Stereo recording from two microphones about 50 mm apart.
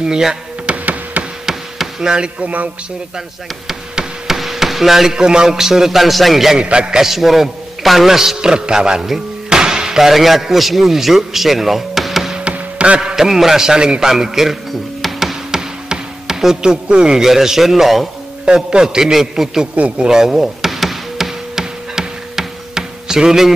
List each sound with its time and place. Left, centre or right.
0.0 s a man's voice: centre
0.7 s a sound: right
1.4 s a sound: centre
2.4 s music: right
3.6 s hammer: centre
6.6 s a man's voice: centre
7.0 s a man's voice: centre
12.4 s music: right
13.1 s a man's voice: centre
15.5 s a sound: centre
17.3 s a man's voice: centre
18.4 s a man's voice: centre
19.7 s a man's voice: right
20.1 s a sound: centre